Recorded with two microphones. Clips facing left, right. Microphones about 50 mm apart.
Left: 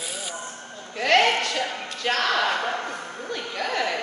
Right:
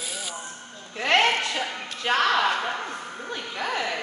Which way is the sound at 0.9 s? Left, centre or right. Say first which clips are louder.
Left 2 dB; centre.